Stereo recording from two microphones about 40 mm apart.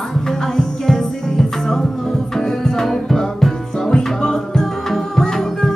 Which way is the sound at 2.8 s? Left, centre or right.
Centre.